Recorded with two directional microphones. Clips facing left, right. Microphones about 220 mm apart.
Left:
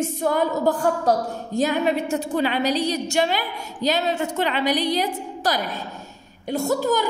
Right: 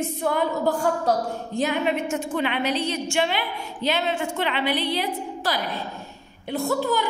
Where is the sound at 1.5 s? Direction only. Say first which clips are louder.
Left 3 dB; 40° left (ahead or behind).